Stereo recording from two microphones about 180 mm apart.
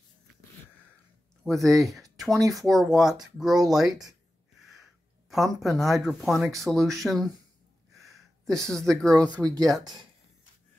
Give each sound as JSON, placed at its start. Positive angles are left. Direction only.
{"t": 1.4, "sound": "speech", "side_deg": 0}
{"t": 5.3, "sound": "speech", "side_deg": 0}
{"t": 7.9, "sound": "a sound", "side_deg": 0}
{"t": 8.7, "sound": "speech", "side_deg": 5}
{"t": 9.4, "sound": "speech", "side_deg": -20}